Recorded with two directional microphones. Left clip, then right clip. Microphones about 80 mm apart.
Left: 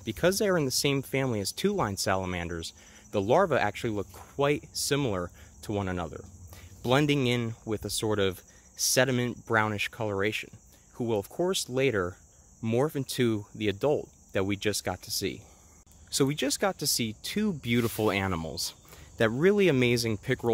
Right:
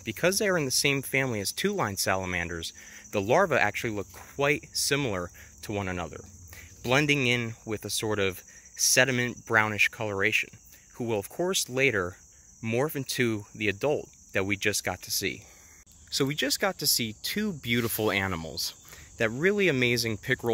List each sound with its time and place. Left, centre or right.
0.0 s speech: centre
2.5 s speech: centre
12.6 s speech: centre
17.5 s speech: left
17.8 s speech: centre
18.4 s speech: left
19.1 s speech: left; by 20.3 s centre